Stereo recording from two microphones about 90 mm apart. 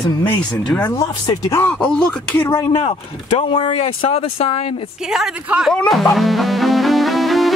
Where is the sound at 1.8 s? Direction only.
10° left (ahead or behind).